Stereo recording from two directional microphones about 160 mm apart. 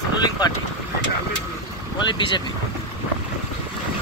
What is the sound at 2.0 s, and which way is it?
Speech, 30° left (ahead or behind).